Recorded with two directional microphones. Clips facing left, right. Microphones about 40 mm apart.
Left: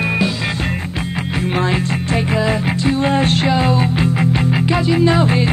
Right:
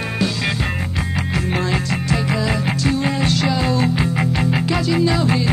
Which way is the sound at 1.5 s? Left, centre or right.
Left.